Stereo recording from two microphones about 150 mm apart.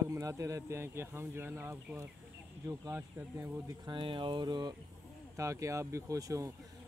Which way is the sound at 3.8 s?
35° right (ahead or behind).